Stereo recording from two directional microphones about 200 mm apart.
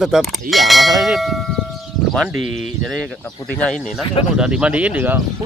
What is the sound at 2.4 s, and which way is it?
Speech, 35° left (ahead or behind).